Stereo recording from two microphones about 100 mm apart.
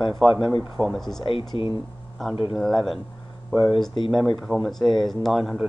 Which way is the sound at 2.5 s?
Centre (ahead or behind).